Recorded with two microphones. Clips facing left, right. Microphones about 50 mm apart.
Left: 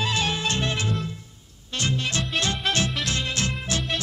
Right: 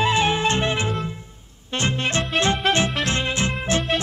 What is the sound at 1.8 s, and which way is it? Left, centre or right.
Music, right.